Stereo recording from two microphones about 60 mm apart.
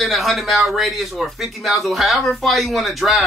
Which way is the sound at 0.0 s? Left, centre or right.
Centre.